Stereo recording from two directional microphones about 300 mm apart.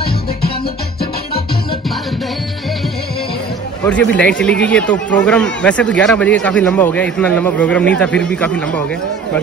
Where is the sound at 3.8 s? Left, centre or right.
Centre.